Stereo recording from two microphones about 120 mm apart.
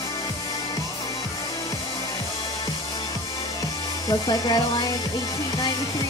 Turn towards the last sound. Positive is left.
turn(degrees=35)  # may be behind; listen again after turning